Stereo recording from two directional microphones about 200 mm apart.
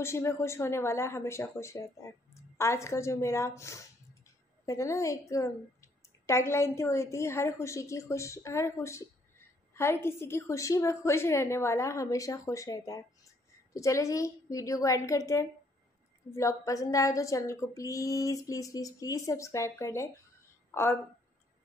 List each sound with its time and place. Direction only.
0.0 s a woman's voice: 15° left (ahead or behind)